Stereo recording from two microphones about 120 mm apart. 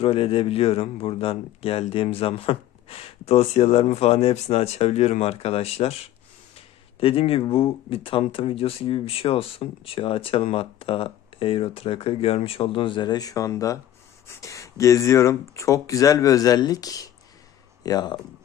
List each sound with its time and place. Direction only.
0.0 s a man's voice: 50° left (ahead or behind); by 18.2 s 35° left (ahead or behind)